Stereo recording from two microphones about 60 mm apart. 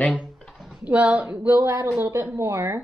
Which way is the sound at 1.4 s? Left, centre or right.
Right.